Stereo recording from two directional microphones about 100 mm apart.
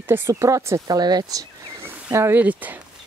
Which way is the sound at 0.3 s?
30° right (ahead or behind).